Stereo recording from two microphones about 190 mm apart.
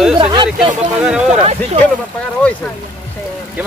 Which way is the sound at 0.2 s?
25° right (ahead or behind).